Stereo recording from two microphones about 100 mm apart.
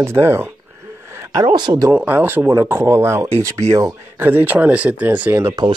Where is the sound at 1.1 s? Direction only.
30° right (ahead or behind).